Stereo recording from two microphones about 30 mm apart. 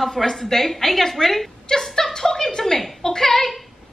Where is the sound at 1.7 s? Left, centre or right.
Centre.